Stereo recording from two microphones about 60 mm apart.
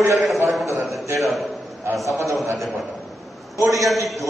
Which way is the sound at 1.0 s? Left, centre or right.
Right.